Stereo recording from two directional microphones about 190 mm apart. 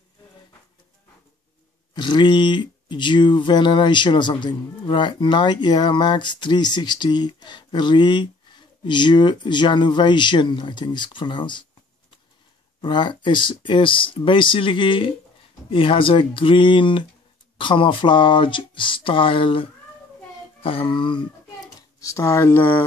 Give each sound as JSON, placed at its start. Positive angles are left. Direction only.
{"t": 2.0, "sound": "speech", "side_deg": 25}
{"t": 12.8, "sound": "speech", "side_deg": 25}